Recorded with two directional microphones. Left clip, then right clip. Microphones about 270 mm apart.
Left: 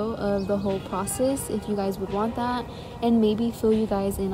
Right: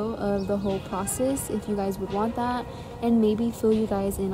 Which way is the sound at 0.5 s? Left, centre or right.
Centre.